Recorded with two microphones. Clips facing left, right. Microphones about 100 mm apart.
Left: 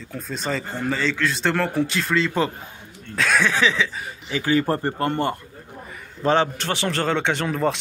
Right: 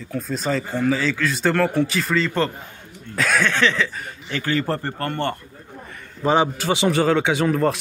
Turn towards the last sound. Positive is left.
turn(degrees=0)  # may be behind; listen again after turning